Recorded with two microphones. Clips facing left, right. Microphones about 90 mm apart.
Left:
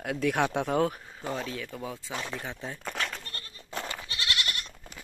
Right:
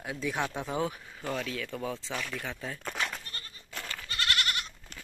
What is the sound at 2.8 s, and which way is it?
Goat, centre (ahead or behind).